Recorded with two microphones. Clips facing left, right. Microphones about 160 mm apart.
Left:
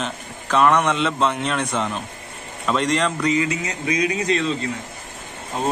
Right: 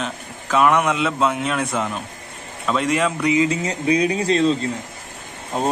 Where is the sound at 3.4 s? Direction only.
30° right (ahead or behind).